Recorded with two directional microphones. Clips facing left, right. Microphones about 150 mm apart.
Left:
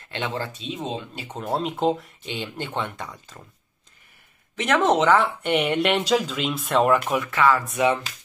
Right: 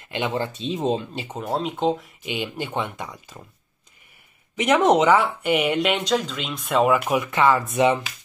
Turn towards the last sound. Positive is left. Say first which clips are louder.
# right 2 dB
turn(degrees=-20)  # may be behind; listen again after turning